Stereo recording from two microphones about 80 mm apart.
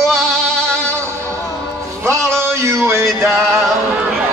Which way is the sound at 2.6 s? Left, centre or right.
Right.